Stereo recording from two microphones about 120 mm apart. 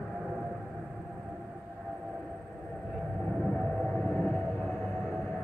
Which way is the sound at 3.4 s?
5° right (ahead or behind).